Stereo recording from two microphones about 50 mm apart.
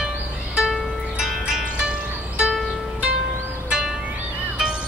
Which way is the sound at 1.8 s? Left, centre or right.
Centre.